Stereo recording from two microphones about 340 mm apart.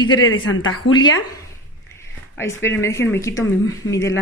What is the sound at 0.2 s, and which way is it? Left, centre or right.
Speech, left.